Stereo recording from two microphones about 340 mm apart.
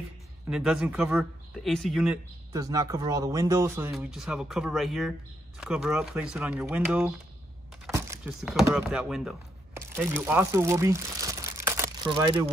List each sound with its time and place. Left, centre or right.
0.5 s speech: centre
9.8 s crumpling: centre